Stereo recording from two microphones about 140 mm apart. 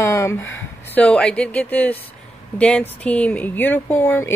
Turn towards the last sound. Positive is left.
turn(degrees=15)  # may be behind; listen again after turning